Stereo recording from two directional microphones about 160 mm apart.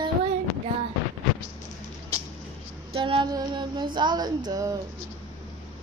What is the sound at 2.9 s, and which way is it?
Female singing, 30° right (ahead or behind).